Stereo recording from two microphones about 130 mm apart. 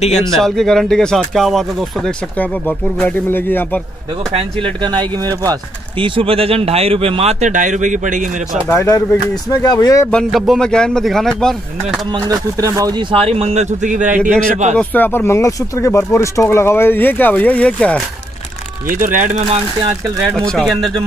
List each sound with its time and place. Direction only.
0.2 s speech: centre (ahead or behind)
2.3 s speech: 10° left (ahead or behind)
4.8 s speech: 35° right (ahead or behind)
5.9 s a man's voice: 40° right (ahead or behind); by 8.3 s 80° right
8.6 s speech: 20° left (ahead or behind)
10.1 s speech: centre (ahead or behind)
12.1 s speech: 30° right (ahead or behind)
13.1 s a man's voice: 50° right (ahead or behind); by 14.3 s 85° right
14.8 s speech: 15° left (ahead or behind)
18.9 s speech: 90° right